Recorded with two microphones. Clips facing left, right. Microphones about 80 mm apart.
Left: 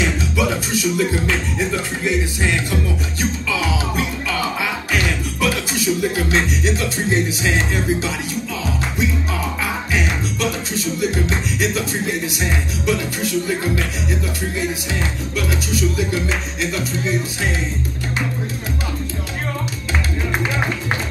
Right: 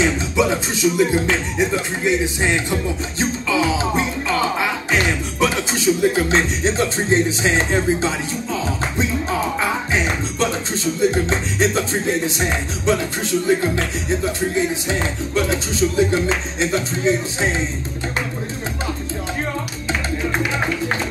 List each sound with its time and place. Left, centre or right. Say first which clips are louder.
0.0 s music: right 2 dB; right
9.6 s music: right 2 dB; right